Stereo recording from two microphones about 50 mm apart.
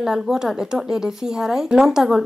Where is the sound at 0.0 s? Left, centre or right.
Centre.